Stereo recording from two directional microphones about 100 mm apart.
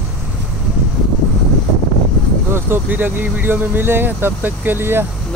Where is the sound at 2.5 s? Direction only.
20° right (ahead or behind).